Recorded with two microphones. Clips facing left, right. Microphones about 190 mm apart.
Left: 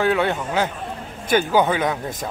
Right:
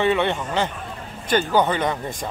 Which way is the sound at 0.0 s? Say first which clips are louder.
Even; centre (ahead or behind).